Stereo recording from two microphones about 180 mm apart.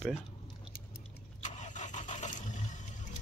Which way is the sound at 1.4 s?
40° left (ahead or behind).